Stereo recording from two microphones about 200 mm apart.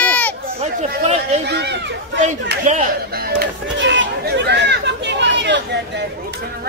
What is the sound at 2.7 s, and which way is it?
Chatter, 45° right (ahead or behind).